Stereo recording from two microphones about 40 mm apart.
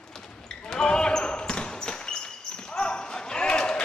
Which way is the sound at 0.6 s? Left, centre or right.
Centre.